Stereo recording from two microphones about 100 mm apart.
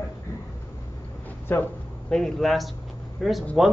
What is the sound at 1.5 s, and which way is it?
Speech, 20° left (ahead or behind).